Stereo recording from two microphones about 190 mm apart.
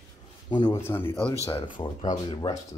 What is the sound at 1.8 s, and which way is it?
Speech, 25° left (ahead or behind).